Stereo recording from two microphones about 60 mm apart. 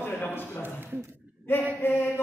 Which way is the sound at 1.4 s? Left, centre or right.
Left.